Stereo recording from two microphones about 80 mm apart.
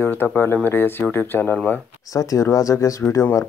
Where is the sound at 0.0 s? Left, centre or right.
Left.